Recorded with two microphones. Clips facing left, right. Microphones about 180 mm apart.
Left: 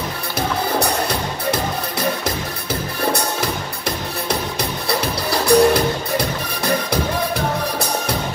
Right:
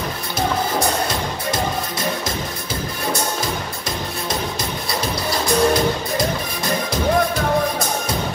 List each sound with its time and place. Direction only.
0.7 s music: 65° left (ahead or behind)
5.5 s music: 65° left (ahead or behind)